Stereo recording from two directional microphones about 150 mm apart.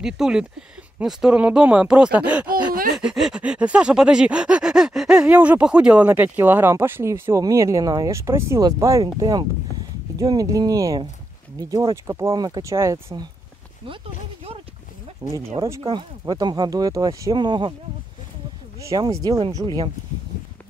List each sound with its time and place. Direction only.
0.0 s a sound: 5° right (ahead or behind); by 11.0 s 25° right (ahead or behind)
11.7 s speech: 20° right (ahead or behind)
15.2 s speech: 35° right (ahead or behind)
18.8 s speech: 20° right (ahead or behind)